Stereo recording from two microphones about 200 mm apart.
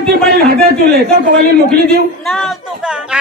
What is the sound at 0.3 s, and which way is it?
A man's voice, 50° right (ahead or behind).